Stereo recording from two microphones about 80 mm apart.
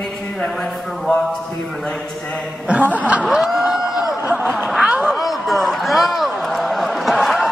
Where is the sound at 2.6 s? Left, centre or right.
Centre.